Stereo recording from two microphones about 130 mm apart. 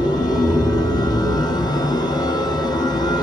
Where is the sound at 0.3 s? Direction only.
30° left (ahead or behind).